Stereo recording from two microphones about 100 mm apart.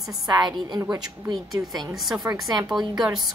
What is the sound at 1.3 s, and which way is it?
A woman's voice, centre (ahead or behind).